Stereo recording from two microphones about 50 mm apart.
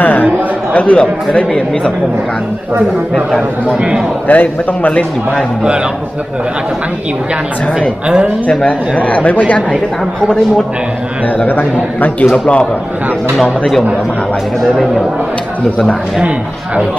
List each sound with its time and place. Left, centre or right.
0.0 s a sound: left
0.7 s a man's voice: left
4.3 s a man's voice: left
8.5 s a man's voice: left
11.4 s a man's voice: left
13.4 s speech: centre